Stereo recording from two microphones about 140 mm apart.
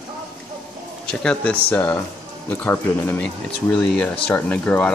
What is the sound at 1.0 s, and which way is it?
Speech, 5° left (ahead or behind).